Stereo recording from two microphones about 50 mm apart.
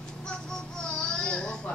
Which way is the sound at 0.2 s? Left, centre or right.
Centre.